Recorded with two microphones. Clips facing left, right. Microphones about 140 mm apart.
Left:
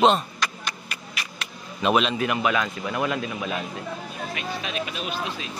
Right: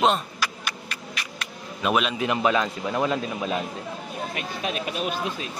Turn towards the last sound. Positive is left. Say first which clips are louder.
# right 3 dB
turn(degrees=-45)  # may be behind; listen again after turning